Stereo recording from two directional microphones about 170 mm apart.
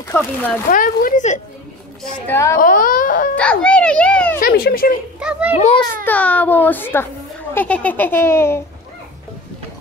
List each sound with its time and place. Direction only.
0.1 s a child's voice: 10° left (ahead or behind)
0.7 s speech: 55° left (ahead or behind)
2.2 s a child's voice: 15° left (ahead or behind)
2.6 s speech: 55° left (ahead or behind)
3.3 s a sound: 5° left (ahead or behind)
4.4 s speech: 65° left (ahead or behind)
5.2 s a child's voice: 5° right (ahead or behind)
6.0 s a child's voice: 10° left (ahead or behind)